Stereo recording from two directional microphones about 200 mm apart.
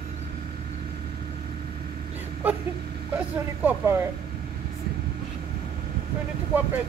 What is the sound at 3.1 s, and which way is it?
Speech, 10° right (ahead or behind).